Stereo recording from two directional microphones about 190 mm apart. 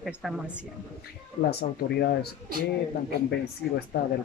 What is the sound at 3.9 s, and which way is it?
Speech, 60° left (ahead or behind).